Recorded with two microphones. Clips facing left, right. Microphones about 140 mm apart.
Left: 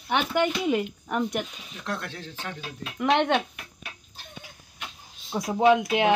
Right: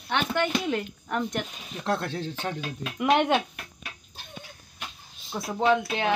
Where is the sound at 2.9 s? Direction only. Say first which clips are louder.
Even; 5° right (ahead or behind).